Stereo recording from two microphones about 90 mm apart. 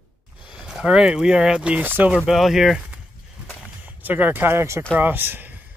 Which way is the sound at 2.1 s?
5° right (ahead or behind).